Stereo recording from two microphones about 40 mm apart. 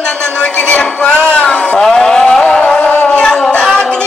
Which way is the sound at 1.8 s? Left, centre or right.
Centre.